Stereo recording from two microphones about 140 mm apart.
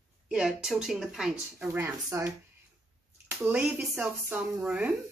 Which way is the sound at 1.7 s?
20° right (ahead or behind).